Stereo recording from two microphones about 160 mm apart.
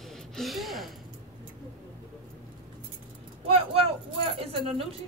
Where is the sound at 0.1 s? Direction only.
Centre (ahead or behind).